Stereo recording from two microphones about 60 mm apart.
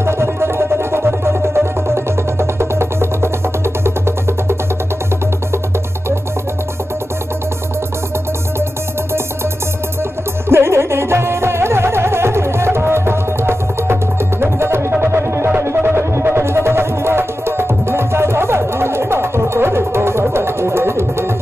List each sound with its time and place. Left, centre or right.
0.0 s music: right
10.5 s music: right